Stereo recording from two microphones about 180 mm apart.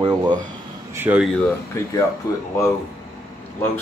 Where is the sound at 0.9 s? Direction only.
10° right (ahead or behind).